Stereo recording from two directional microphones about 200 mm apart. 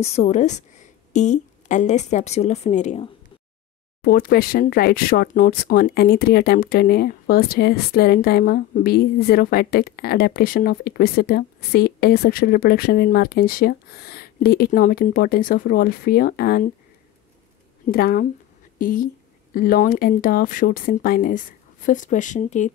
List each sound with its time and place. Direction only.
0.0 s a woman's voice: 30° left (ahead or behind)
4.0 s speech: 50° left (ahead or behind)
17.9 s speech: 50° left (ahead or behind)